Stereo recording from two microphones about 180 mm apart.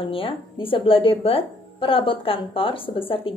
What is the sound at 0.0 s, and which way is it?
A woman's voice, 30° left (ahead or behind).